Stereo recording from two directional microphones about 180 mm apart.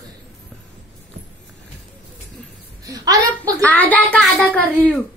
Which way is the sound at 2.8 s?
20° right (ahead or behind).